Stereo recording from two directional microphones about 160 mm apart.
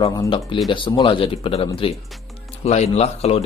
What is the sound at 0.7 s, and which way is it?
Speech, 30° left (ahead or behind).